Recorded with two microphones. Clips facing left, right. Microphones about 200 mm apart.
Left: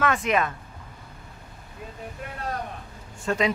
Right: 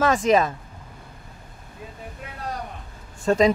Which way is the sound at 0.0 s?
35° right (ahead or behind).